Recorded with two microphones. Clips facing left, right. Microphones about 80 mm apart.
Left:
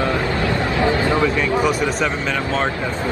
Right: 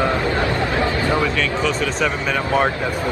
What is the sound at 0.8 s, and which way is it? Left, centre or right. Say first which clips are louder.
Speech: left 5 dB; left.